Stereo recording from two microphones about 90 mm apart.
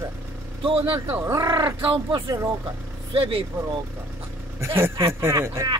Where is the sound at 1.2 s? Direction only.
35° right (ahead or behind).